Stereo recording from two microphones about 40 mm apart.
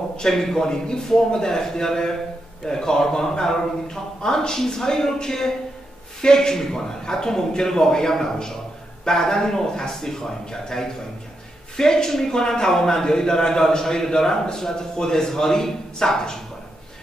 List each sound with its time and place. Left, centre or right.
0.2 s a man's voice: centre